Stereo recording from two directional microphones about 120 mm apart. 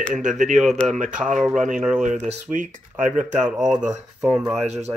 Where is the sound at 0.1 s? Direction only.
90° right.